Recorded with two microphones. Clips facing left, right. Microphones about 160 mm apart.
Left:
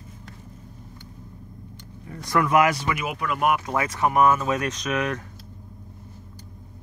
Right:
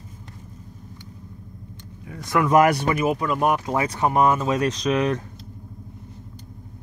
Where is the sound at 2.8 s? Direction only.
35° right (ahead or behind).